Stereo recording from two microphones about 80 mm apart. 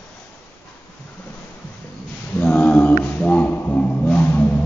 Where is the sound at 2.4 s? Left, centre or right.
Left.